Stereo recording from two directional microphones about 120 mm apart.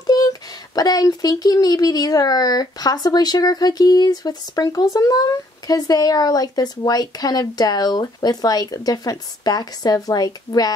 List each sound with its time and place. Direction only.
0.0 s speech: 30° left (ahead or behind)